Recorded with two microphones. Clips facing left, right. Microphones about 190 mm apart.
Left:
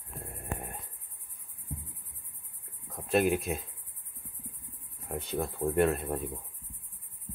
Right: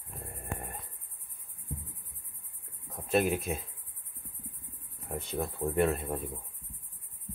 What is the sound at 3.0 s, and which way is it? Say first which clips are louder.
Speech: left 1 dB; centre (ahead or behind).